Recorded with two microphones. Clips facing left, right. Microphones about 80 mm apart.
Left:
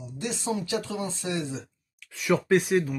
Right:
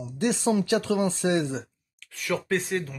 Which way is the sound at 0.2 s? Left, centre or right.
Right.